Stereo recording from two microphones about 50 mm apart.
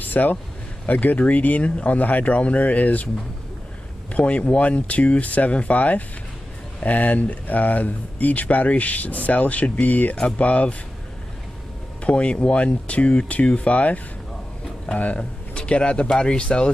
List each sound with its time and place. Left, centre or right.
0.1 s speech: left
4.1 s speech: left
12.0 s speech: left